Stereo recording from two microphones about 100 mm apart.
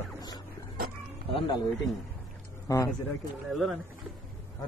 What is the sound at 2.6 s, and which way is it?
Speech, 30° left (ahead or behind).